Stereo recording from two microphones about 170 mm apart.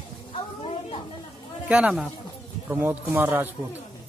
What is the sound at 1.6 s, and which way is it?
A man's voice, 5° right (ahead or behind).